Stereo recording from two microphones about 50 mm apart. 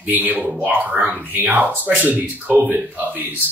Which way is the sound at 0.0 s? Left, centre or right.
Right.